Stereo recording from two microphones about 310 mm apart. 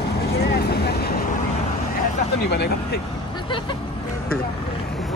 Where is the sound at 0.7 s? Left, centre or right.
Left.